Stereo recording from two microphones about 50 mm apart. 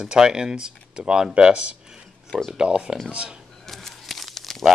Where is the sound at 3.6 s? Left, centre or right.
Centre.